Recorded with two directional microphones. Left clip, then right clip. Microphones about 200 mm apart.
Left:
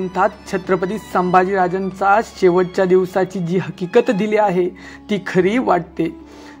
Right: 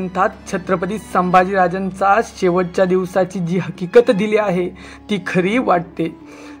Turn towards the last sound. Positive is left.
turn(degrees=15)  # may be behind; listen again after turning